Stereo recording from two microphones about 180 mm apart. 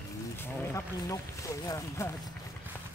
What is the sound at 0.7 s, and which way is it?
Speech, 20° left (ahead or behind).